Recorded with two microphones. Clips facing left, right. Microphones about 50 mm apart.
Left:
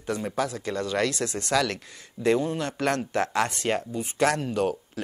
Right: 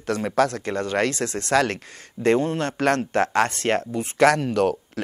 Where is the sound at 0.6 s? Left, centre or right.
Right.